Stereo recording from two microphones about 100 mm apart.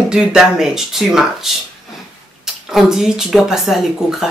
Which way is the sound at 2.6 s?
5° right (ahead or behind).